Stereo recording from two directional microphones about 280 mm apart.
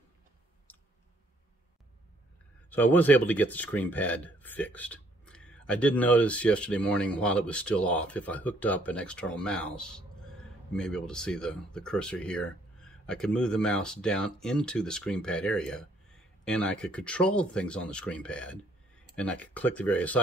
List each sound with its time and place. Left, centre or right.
2.7 s speech: centre